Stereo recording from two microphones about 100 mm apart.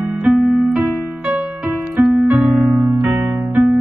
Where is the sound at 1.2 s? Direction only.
15° right (ahead or behind).